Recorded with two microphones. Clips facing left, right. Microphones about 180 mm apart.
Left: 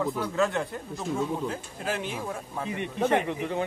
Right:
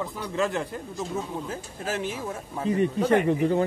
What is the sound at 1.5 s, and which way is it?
Speech, 40° right (ahead or behind).